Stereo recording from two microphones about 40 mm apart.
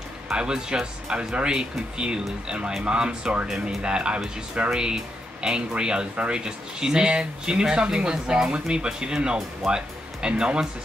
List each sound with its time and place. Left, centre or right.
0.4 s speech: right